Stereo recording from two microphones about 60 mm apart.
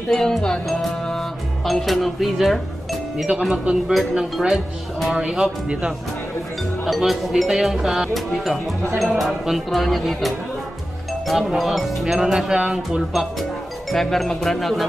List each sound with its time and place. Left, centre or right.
0.1 s music: centre
3.3 s speech: centre
6.8 s speech: centre
13.1 s speech: centre